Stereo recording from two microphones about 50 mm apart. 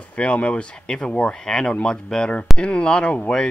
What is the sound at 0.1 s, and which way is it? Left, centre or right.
Speech, left.